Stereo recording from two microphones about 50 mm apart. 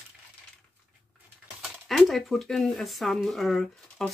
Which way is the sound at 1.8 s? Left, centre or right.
Centre.